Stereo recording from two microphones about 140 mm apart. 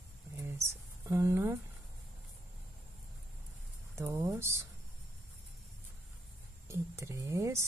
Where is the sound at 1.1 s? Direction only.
20° right (ahead or behind).